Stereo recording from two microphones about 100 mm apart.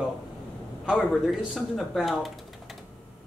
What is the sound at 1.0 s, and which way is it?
Speech, centre (ahead or behind).